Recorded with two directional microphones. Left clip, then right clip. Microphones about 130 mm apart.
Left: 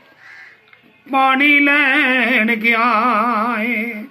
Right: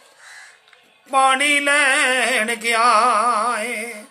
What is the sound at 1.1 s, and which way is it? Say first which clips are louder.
Music: left 3 dB; 25° right (ahead or behind).